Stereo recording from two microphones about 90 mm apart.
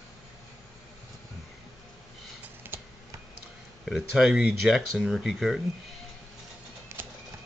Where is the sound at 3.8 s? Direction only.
5° right (ahead or behind).